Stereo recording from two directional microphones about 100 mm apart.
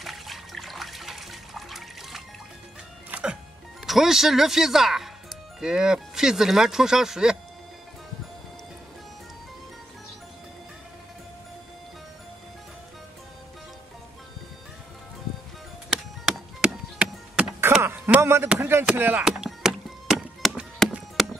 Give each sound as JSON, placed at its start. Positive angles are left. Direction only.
{"t": 0.0, "sound": "water", "side_deg": 0}
{"t": 3.1, "sound": "music", "side_deg": -10}
{"t": 3.8, "sound": "speech", "side_deg": 0}
{"t": 15.9, "sound": "chop", "side_deg": -5}
{"t": 17.8, "sound": "a sound", "side_deg": -25}
{"t": 18.6, "sound": "speech", "side_deg": -25}
{"t": 19.2, "sound": "music", "side_deg": -5}